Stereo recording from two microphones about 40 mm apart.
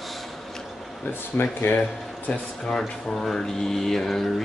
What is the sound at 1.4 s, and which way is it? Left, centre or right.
Speech, left.